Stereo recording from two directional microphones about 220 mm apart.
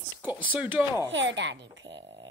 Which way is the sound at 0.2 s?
5° right (ahead or behind).